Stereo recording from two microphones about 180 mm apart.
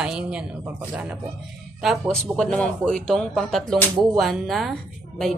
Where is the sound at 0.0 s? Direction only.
5° right (ahead or behind).